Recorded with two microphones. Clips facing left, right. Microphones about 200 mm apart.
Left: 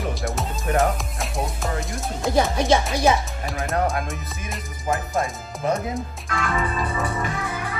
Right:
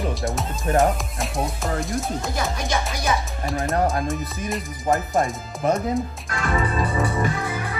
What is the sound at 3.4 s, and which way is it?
Music, centre (ahead or behind).